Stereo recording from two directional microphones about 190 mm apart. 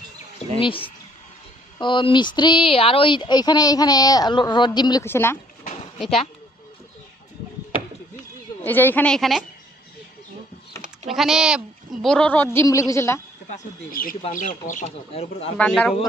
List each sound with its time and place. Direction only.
0.6 s speech: 30° left (ahead or behind); by 5.4 s 10° left (ahead or behind)
8.6 s a woman's voice: 10° left (ahead or behind)
11.1 s speech: centre (ahead or behind)
12.5 s a woman's voice: 15° left (ahead or behind)
13.5 s speech: 45° left (ahead or behind)
15.5 s speech: 5° left (ahead or behind)